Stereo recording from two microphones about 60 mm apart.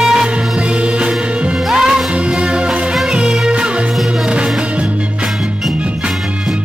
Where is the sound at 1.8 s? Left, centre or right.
Centre.